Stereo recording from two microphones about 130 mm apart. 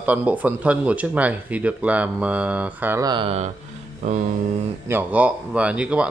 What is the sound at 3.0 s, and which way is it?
Speech, 35° right (ahead or behind).